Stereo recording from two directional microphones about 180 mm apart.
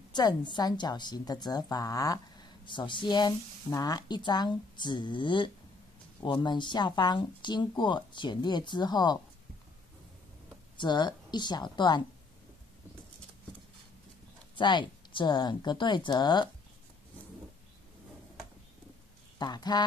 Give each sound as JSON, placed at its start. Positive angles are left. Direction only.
{"t": 0.1, "sound": "a woman's voice", "side_deg": 25}
{"t": 10.8, "sound": "a woman's voice", "side_deg": 25}
{"t": 14.5, "sound": "a woman's voice", "side_deg": 25}
{"t": 19.3, "sound": "speech", "side_deg": 25}